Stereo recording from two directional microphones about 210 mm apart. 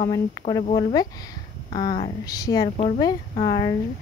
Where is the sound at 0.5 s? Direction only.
20° left (ahead or behind).